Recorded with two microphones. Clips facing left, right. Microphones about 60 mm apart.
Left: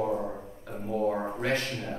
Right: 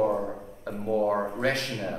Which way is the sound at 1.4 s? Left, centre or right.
Right.